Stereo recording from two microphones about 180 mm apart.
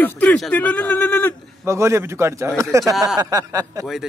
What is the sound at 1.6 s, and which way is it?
A man's voice, 15° right (ahead or behind).